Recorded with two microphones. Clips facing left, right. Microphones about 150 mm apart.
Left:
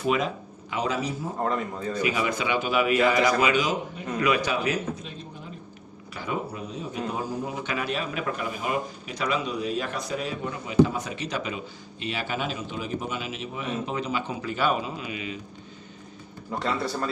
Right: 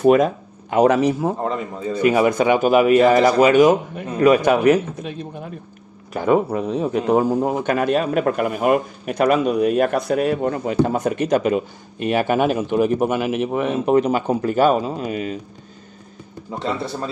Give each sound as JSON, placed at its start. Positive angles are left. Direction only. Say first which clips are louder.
{"t": 0.0, "sound": "speech", "louder": "right 11 dB", "side_deg": -50}
{"t": 2.0, "sound": "a man's voice", "louder": "right 11 dB", "side_deg": -50}
{"t": 16.5, "sound": "speech", "louder": "right 3 dB", "side_deg": -25}